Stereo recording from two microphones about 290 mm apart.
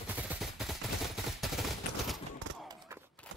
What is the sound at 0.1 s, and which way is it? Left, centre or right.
Fusillade, centre.